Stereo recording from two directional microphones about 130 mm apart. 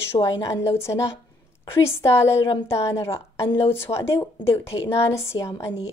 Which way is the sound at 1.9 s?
20° left (ahead or behind).